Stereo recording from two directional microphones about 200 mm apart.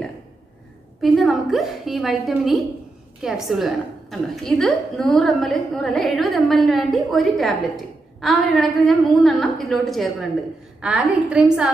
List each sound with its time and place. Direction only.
1.0 s a woman's voice: centre (ahead or behind)